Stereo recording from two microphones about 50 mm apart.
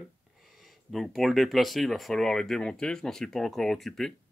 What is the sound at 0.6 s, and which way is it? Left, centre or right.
Speech, centre.